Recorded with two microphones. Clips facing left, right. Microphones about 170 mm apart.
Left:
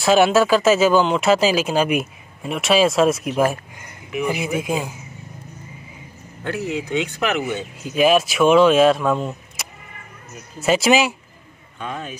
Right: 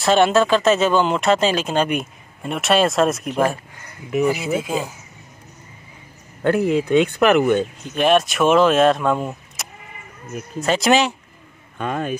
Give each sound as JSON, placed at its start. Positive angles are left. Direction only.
{"t": 0.0, "sound": "speech", "side_deg": 5}
{"t": 4.1, "sound": "speech", "side_deg": -40}
{"t": 4.6, "sound": "speech", "side_deg": 15}
{"t": 6.4, "sound": "speech", "side_deg": -55}
{"t": 7.8, "sound": "speech", "side_deg": 5}
{"t": 11.8, "sound": "speech", "side_deg": -55}